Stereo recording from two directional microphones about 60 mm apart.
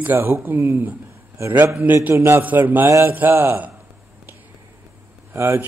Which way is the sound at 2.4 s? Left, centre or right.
Right.